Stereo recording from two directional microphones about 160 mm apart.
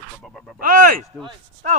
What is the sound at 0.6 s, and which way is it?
Speech, 60° right (ahead or behind).